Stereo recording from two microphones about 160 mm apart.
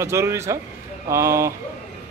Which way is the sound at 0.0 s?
15° right (ahead or behind).